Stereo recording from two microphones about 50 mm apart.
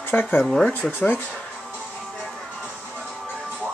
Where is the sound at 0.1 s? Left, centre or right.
Left.